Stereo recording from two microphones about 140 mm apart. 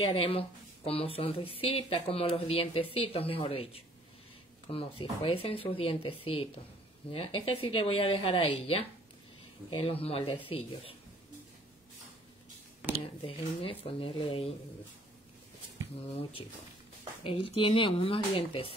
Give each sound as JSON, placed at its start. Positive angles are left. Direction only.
{"t": 0.0, "sound": "speech", "side_deg": 40}
{"t": 13.2, "sound": "speech", "side_deg": 40}
{"t": 16.1, "sound": "speech", "side_deg": 45}